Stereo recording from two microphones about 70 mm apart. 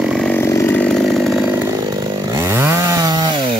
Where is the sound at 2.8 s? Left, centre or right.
Right.